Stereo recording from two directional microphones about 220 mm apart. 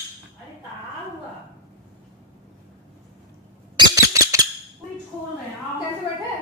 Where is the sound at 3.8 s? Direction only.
15° right (ahead or behind).